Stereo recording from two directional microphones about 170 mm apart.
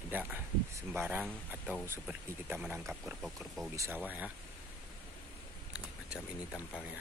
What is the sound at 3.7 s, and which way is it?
Speech, 15° right (ahead or behind).